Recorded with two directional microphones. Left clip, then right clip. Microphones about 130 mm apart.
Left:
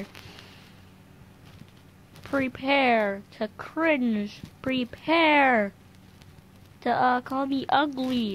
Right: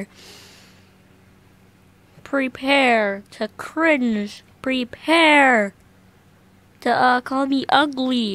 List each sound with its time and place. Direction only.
2.2 s a woman's voice: 30° right (ahead or behind)
6.8 s a woman's voice: 40° right (ahead or behind)